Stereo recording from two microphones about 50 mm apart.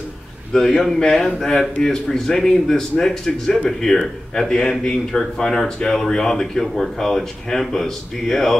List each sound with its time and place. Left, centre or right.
0.5 s speech: centre